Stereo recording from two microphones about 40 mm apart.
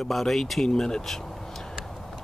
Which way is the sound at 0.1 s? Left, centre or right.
Centre.